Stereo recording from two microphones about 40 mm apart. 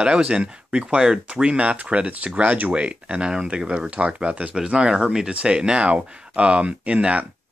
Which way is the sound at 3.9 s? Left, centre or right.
Right.